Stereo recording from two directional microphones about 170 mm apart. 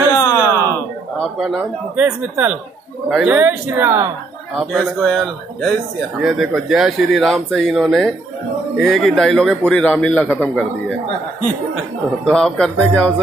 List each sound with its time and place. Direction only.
0.1 s a sound: 20° left (ahead or behind)
1.4 s speech: 5° right (ahead or behind)
4.6 s a man's voice: 5° left (ahead or behind)
12.3 s a man's voice: 5° left (ahead or behind)